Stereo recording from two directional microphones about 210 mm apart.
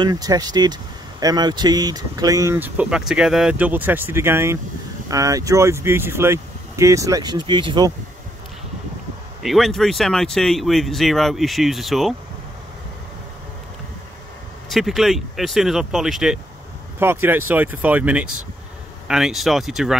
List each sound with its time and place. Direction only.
0.0 s speech: 20° right (ahead or behind)
9.4 s speech: centre (ahead or behind)
14.7 s speech: centre (ahead or behind)